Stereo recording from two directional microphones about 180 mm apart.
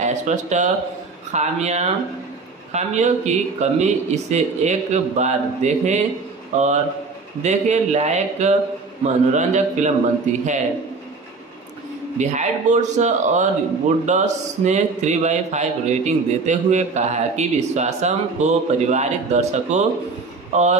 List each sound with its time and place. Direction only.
0.0 s a man's voice: 40° right (ahead or behind)
12.2 s a man's voice: 40° right (ahead or behind)